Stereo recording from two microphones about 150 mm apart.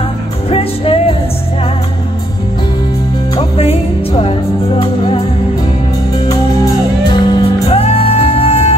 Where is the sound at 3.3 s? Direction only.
40° left (ahead or behind).